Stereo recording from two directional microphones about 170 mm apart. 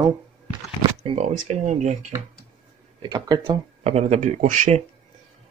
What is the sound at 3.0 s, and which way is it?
Speech, 25° right (ahead or behind).